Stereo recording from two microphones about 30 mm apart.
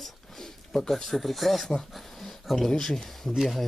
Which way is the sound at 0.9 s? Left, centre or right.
Centre.